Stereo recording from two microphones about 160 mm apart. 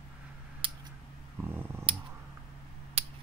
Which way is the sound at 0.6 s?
30° right (ahead or behind).